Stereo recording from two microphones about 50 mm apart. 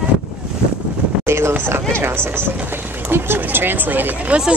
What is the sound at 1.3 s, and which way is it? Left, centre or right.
Speech, right.